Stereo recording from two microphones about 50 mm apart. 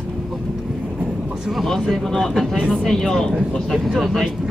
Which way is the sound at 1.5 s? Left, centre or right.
Centre.